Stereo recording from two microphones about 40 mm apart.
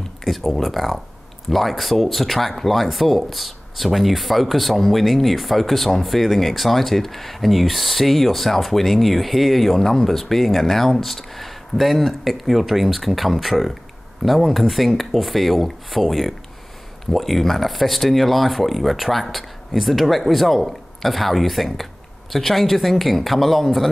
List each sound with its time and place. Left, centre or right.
0.2 s speech: centre